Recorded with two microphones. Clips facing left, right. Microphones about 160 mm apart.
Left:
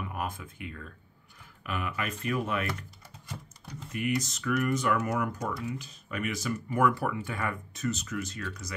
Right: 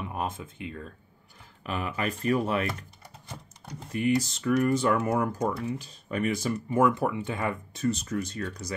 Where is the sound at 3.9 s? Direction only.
30° right (ahead or behind).